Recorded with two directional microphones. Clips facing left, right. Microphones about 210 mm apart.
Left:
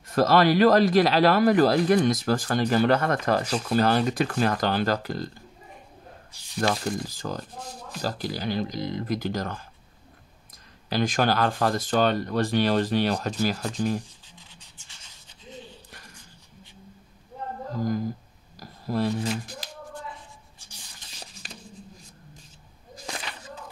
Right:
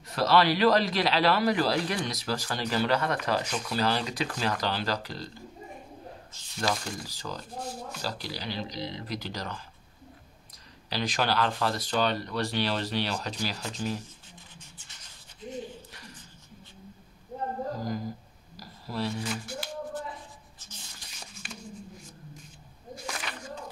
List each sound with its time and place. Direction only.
0.1 s a man's voice: 50° left (ahead or behind)
6.6 s a man's voice: 50° left (ahead or behind)
10.9 s a man's voice: 50° left (ahead or behind)
18.6 s a sound: 50° left (ahead or behind)
19.2 s speech: 35° left (ahead or behind)
20.5 s writing: 15° left (ahead or behind)
21.1 s a sound: 35° left (ahead or behind)